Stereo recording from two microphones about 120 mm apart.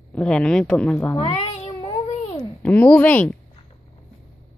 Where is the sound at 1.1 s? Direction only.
50° left (ahead or behind).